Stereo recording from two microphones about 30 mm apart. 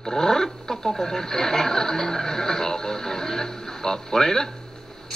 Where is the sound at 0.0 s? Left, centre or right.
Centre.